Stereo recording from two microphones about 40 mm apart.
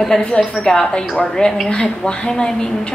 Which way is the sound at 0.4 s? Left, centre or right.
Centre.